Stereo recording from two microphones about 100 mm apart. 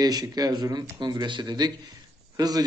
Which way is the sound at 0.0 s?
40° right (ahead or behind).